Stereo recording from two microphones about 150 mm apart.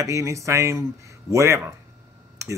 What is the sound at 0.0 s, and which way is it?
Speech, 20° right (ahead or behind).